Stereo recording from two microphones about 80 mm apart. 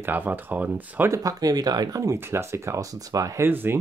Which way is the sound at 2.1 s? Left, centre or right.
Right.